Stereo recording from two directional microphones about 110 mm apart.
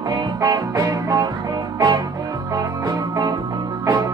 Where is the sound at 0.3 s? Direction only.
35° right (ahead or behind).